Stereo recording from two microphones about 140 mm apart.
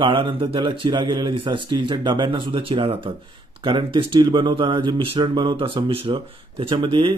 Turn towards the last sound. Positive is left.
turn(degrees=-40)  # may be behind; listen again after turning